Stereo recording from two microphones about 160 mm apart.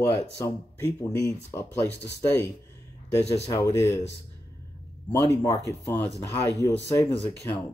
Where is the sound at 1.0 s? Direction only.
20° left (ahead or behind).